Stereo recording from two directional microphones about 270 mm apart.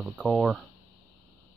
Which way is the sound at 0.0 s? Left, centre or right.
Centre.